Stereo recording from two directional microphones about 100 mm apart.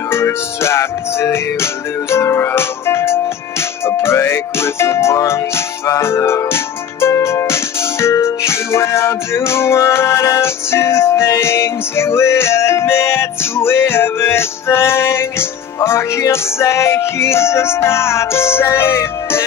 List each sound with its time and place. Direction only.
0.1 s music: 25° left (ahead or behind)
5.9 s speech: 25° left (ahead or behind)